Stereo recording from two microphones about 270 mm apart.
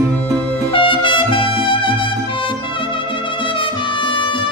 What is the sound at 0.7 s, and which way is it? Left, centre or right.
Music, centre.